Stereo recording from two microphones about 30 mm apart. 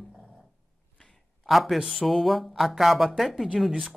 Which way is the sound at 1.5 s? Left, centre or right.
Centre.